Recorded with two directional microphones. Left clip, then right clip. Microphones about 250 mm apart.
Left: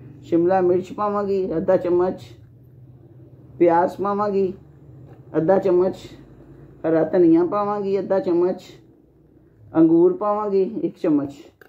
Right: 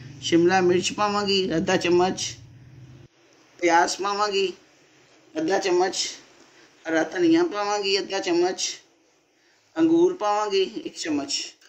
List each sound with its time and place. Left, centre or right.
0.3 s a man's voice: right
3.6 s a man's voice: right
9.9 s a man's voice: right